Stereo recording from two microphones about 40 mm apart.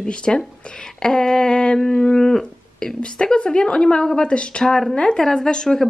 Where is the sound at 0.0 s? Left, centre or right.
Centre.